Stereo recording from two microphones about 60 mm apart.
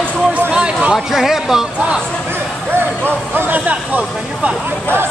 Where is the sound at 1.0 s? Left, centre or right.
Centre.